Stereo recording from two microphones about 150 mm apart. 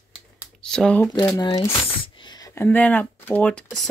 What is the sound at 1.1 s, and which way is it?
Speech, 25° left (ahead or behind).